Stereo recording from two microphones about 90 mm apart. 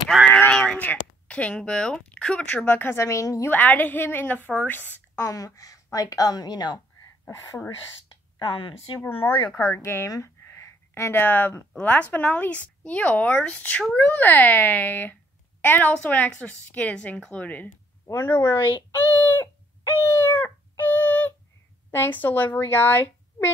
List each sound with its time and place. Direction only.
0.3 s a sound: 15° left (ahead or behind)
0.7 s speech: 15° left (ahead or behind)
3.0 s a woman's voice: 35° left (ahead or behind)
3.4 s speech: 20° left (ahead or behind)
5.2 s a woman's voice: 40° left (ahead or behind)
7.2 s a woman's voice: 35° left (ahead or behind)
8.4 s speech: 65° left (ahead or behind)
9.0 s a woman's voice: 25° left (ahead or behind)
18.0 s speech: 30° left (ahead or behind)